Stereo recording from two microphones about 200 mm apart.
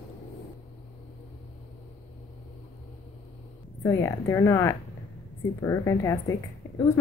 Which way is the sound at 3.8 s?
15° left (ahead or behind).